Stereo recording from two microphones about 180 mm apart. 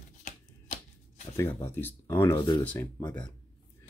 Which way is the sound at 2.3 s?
25° left (ahead or behind).